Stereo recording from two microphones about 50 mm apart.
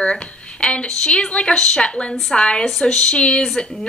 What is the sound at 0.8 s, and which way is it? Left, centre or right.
A woman's voice, centre.